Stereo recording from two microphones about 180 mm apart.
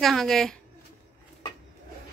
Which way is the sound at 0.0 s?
Centre (ahead or behind).